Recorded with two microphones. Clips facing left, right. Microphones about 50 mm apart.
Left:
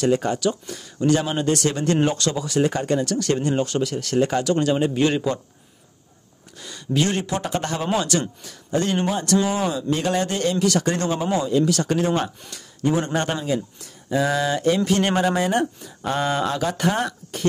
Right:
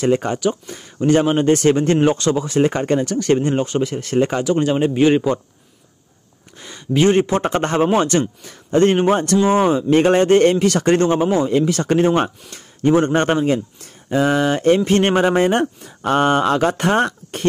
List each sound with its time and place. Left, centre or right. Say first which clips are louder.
0.0 s speech: right 3 dB; right
6.6 s a man's voice: right 7 dB; right